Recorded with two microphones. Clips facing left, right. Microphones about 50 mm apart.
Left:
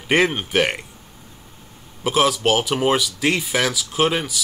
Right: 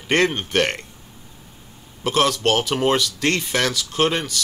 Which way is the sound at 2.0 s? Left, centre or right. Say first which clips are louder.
Left 1 dB; centre.